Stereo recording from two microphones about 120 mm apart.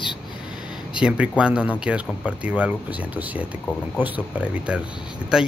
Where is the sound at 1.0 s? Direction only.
10° right (ahead or behind).